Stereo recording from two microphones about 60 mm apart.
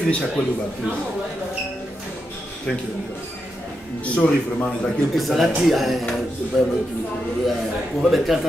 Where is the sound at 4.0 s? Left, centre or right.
Centre.